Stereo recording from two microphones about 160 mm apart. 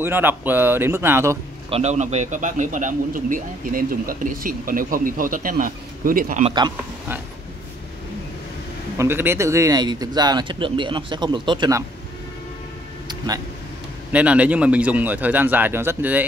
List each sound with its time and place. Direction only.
0.0 s speech: 10° right (ahead or behind)
1.7 s speech: 45° right (ahead or behind); by 6.4 s 60° right (ahead or behind)
8.9 s speech: 15° right (ahead or behind)
14.1 s speech: 10° right (ahead or behind)